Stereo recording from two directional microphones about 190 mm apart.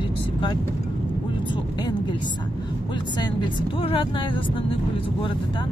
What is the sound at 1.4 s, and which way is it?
Speech, 25° left (ahead or behind).